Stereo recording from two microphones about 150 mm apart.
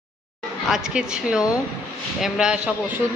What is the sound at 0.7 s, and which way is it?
A woman's voice, 5° right (ahead or behind).